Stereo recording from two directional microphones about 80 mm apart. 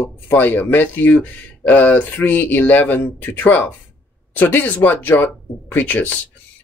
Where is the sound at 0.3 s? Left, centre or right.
Left.